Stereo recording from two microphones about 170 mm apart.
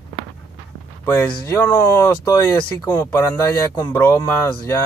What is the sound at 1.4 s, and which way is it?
Speech, 15° left (ahead or behind).